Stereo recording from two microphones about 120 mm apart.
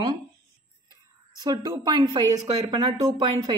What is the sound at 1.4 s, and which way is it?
A woman's voice, 30° right (ahead or behind).